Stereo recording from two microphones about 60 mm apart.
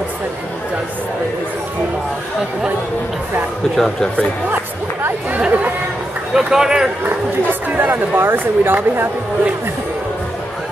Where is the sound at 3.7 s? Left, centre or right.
Centre.